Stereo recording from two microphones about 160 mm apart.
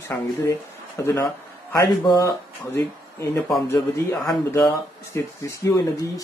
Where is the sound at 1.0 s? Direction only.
15° left (ahead or behind).